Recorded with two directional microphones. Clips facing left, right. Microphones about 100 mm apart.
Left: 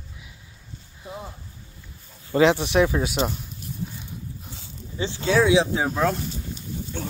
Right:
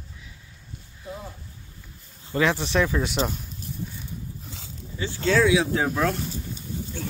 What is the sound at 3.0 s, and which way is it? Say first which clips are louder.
Speech: left 1 dB; 5° left (ahead or behind).